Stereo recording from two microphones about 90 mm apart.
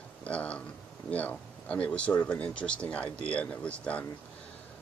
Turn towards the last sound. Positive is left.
turn(degrees=15)  # may be behind; listen again after turning